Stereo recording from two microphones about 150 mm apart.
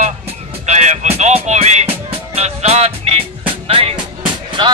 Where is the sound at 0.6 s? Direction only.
50° right (ahead or behind).